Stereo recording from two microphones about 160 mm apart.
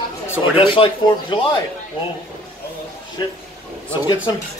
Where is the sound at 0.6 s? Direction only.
30° left (ahead or behind).